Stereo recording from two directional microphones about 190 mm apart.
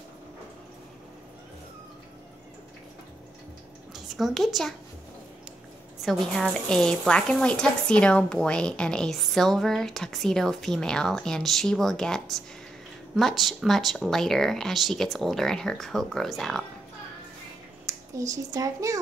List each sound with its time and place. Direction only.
3.9 s a woman's voice: centre (ahead or behind)
6.0 s a woman's voice: centre (ahead or behind)
17.8 s speech: 15° right (ahead or behind)